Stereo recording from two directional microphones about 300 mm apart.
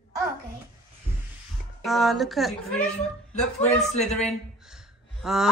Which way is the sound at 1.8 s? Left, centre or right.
Centre.